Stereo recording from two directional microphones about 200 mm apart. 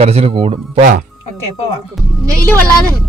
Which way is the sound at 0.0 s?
30° right (ahead or behind).